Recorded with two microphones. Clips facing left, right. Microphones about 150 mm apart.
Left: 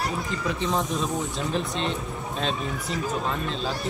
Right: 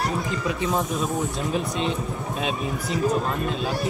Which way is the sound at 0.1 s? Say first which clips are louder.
Right 2 dB; centre (ahead or behind).